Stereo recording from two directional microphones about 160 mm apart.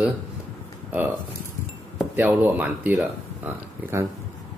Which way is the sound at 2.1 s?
10° right (ahead or behind).